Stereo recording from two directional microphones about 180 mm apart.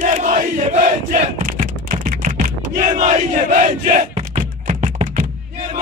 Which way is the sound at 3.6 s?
40° right (ahead or behind).